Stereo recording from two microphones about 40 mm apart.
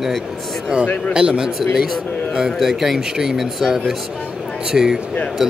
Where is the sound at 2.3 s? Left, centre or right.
Centre.